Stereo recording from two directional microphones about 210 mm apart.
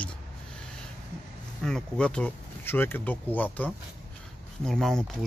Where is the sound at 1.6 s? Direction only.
5° left (ahead or behind).